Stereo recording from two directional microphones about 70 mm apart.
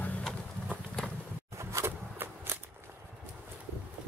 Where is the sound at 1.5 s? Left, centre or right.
Right.